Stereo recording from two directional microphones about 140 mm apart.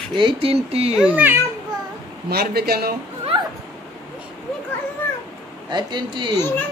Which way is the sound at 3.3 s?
35° right (ahead or behind).